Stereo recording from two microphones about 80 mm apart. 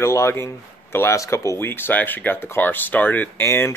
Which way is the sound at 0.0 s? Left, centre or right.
Left.